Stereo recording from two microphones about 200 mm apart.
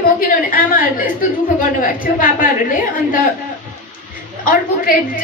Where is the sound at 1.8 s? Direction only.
45° left (ahead or behind).